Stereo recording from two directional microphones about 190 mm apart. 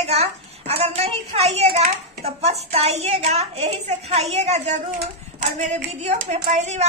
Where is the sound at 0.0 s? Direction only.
35° right (ahead or behind).